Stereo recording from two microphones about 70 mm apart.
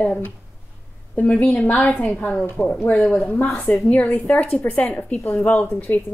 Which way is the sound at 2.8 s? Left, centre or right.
Left.